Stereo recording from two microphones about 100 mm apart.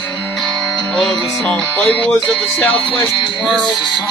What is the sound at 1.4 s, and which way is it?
A man's voice, 15° left (ahead or behind).